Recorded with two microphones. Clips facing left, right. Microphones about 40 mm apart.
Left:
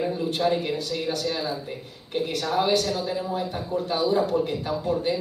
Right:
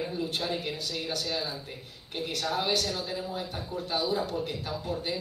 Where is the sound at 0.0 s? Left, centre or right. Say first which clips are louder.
Left 6 dB; centre.